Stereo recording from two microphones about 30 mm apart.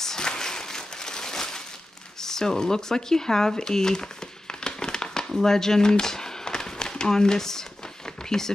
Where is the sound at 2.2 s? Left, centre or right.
Centre.